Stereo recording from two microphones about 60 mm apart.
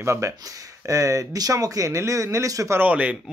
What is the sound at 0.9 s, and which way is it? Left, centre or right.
Speech, right.